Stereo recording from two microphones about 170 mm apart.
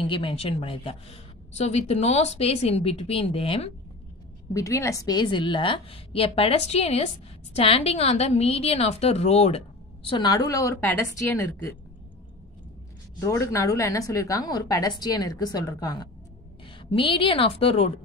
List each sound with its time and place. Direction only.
0.0 s a woman's voice: 30° left (ahead or behind)
4.6 s a woman's voice: 20° left (ahead or behind); by 9.6 s 40° left (ahead or behind)
10.0 s a woman's voice: 25° left (ahead or behind)
13.2 s a woman's voice: 15° left (ahead or behind); by 18.0 s 35° left (ahead or behind)